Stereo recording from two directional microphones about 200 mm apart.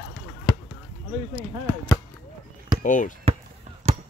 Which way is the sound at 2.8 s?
40° left (ahead or behind).